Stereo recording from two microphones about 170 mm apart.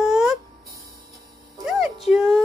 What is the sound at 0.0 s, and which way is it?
Music, 5° right (ahead or behind).